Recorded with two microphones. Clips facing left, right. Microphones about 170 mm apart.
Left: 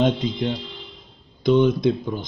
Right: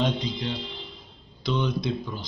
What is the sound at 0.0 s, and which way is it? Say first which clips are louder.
Speech: left 6 dB; 50° left (ahead or behind).